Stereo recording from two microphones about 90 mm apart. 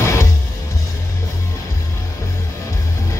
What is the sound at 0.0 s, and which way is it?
Music, 30° left (ahead or behind).